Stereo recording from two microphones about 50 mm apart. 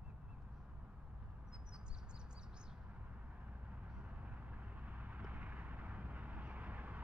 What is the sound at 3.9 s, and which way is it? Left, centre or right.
Vehicle, right.